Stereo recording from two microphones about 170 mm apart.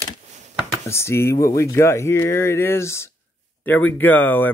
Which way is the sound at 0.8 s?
15° left (ahead or behind).